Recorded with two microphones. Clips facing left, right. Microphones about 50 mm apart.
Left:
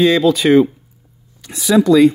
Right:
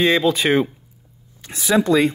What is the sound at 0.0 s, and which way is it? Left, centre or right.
Speech, right.